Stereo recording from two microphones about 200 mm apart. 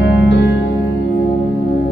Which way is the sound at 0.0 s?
60° left (ahead or behind).